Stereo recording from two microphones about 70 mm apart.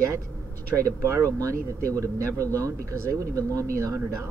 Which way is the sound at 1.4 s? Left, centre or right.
Right.